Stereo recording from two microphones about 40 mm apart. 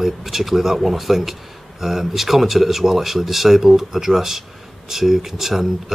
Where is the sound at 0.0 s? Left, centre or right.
Centre.